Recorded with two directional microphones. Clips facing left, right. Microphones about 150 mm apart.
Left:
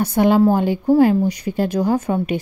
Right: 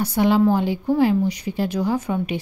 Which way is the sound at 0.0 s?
50° left (ahead or behind).